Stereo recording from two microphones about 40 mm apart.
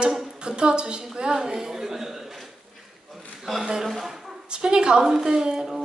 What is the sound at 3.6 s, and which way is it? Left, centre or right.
Speech, centre.